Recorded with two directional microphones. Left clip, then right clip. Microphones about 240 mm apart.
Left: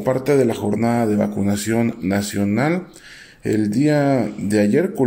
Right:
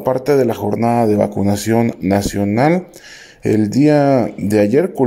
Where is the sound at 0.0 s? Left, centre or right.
Right.